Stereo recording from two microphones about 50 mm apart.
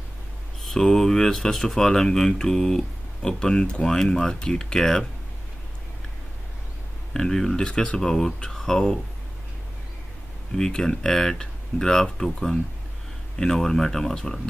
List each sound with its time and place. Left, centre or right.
0.6 s speech: centre
7.2 s speech: centre
10.6 s speech: centre